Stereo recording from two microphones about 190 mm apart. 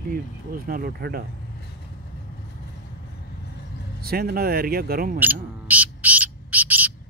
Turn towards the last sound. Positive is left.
turn(degrees=-10)  # may be behind; listen again after turning